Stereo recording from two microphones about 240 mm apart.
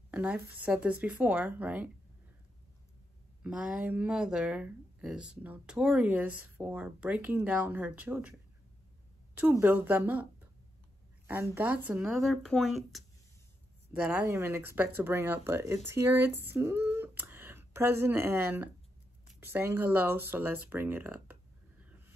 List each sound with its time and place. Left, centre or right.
0.1 s speech: centre
3.4 s speech: centre
9.4 s speech: centre
11.2 s speech: centre
16.4 s a sound: centre
19.2 s speech: centre
20.6 s a sound: centre